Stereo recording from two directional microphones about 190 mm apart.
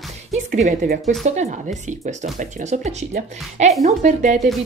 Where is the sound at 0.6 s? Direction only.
40° right (ahead or behind).